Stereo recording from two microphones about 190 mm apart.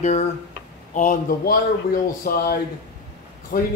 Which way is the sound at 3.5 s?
50° left (ahead or behind).